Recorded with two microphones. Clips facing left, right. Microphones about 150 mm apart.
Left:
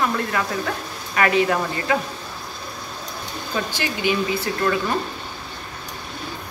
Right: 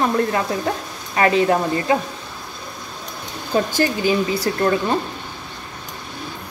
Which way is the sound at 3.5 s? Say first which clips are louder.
Right 8 dB; 40° right (ahead or behind).